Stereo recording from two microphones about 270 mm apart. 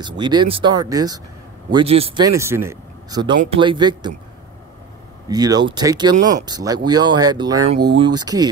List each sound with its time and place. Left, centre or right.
0.0 s speech: centre
5.3 s speech: centre